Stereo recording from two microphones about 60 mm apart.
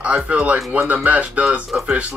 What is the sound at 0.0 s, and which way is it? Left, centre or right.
Speech, right.